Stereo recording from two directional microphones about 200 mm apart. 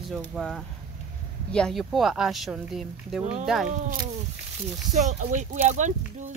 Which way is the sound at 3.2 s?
35° right (ahead or behind).